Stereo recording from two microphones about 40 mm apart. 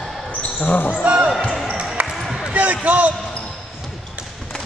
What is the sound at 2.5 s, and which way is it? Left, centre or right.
Speech, right.